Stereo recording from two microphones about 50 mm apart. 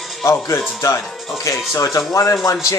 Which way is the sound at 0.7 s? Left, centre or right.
Left.